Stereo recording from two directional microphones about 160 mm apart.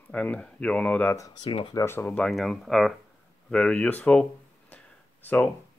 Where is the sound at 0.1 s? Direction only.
10° left (ahead or behind).